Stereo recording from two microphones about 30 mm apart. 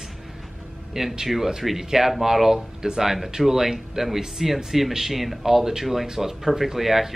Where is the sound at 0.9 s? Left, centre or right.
Centre.